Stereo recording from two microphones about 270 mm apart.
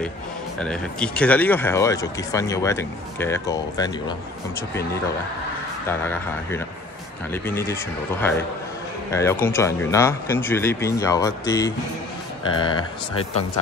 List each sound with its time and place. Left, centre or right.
0.6 s speech: centre
5.9 s speech: centre